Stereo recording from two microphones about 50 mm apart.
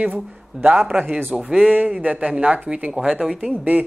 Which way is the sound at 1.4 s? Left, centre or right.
Centre.